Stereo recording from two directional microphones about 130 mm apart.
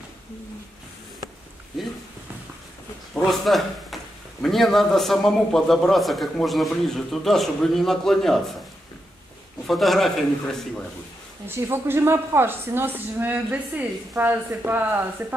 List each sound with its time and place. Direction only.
3.2 s a man's voice: centre (ahead or behind)
9.7 s a man's voice: centre (ahead or behind)
11.4 s a woman's voice: 20° right (ahead or behind)